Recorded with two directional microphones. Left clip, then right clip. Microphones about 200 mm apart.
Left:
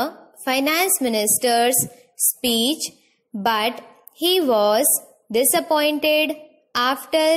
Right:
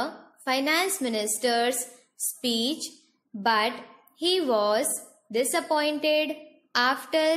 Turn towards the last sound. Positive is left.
turn(degrees=25)  # may be behind; listen again after turning